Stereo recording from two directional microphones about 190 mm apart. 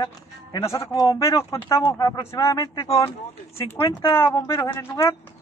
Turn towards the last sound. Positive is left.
turn(degrees=15)  # may be behind; listen again after turning